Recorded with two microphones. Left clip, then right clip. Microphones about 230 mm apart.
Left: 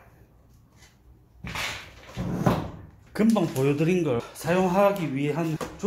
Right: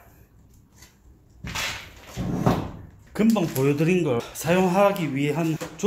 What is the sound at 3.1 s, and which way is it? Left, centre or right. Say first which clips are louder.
Speech: right 1 dB; centre.